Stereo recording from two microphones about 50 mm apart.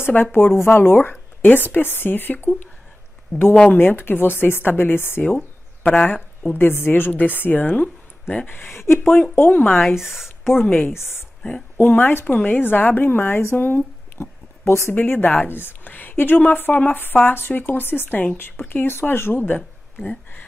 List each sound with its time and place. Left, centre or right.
0.0 s a woman's voice: left
3.3 s speech: left
3.7 s speech: left
5.9 s a woman's voice: left
6.5 s a woman's voice: left
8.5 s speech: left
9.8 s speech: centre
11.4 s a sound: centre
11.8 s a woman's voice: left
18.9 s speech: left
19.4 s a sound: left